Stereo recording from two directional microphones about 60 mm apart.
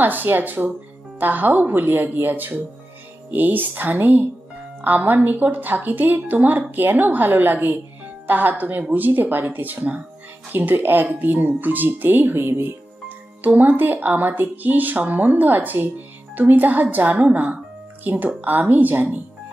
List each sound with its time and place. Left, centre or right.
0.0 s a woman's voice: right
13.4 s a woman's voice: right